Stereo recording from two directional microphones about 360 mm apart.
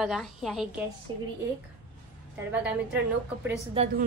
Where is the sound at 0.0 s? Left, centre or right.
Centre.